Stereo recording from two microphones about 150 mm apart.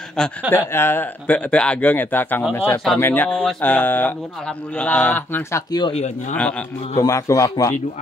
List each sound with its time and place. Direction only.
0.5 s speech: 15° left (ahead or behind)
5.7 s a man's voice: 30° left (ahead or behind)
7.0 s a man's voice: 20° left (ahead or behind)